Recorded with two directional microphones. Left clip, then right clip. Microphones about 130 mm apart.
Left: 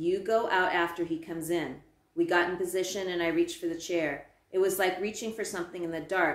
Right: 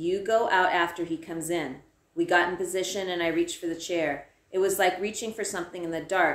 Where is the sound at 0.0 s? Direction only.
15° right (ahead or behind).